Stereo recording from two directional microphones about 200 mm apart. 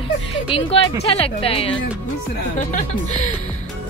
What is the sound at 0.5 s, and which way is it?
Speech, 25° left (ahead or behind).